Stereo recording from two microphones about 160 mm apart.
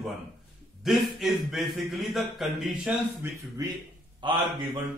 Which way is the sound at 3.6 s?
20° right (ahead or behind).